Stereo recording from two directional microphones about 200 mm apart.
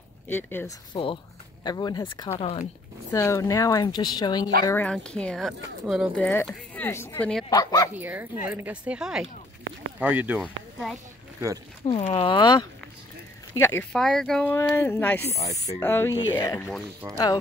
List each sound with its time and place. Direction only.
0.3 s speech: 10° left (ahead or behind)
0.9 s speech: 25° left (ahead or behind)
2.3 s speech: 30° left (ahead or behind)
3.1 s speech: 15° left (ahead or behind)
4.6 s speech: 10° left (ahead or behind)
7.4 s speech: 20° left (ahead or behind)
7.9 s speech: 10° right (ahead or behind)
11.8 s speech: 30° left (ahead or behind); by 15.2 s 10° left (ahead or behind)
15.2 s speech: 30° left (ahead or behind)
15.8 s speech: 10° left (ahead or behind)